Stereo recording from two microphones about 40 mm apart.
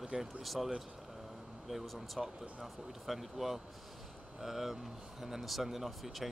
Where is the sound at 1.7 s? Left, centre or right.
Centre.